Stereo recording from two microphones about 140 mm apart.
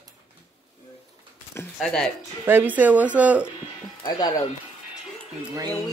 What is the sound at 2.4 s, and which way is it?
Speech, 15° right (ahead or behind).